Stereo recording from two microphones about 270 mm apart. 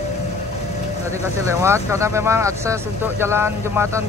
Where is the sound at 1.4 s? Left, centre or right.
Centre.